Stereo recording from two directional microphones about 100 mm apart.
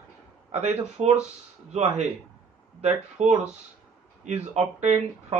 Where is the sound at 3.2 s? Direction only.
90° right.